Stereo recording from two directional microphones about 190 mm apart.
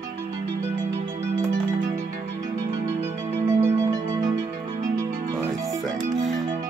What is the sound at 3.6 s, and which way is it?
Music, 15° right (ahead or behind).